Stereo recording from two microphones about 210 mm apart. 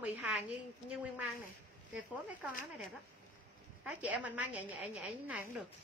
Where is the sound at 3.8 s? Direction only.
5° right (ahead or behind).